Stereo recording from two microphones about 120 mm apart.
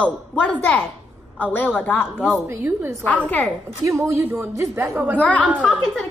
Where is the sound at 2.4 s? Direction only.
20° right (ahead or behind).